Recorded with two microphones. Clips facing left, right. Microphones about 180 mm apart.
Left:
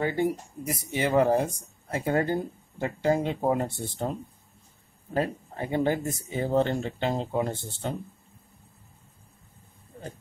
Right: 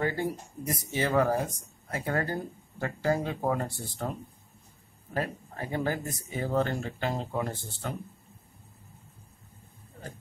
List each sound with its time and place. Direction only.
0.0 s speech: 20° left (ahead or behind)